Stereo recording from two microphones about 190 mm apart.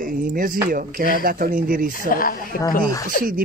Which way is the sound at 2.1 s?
50° left (ahead or behind).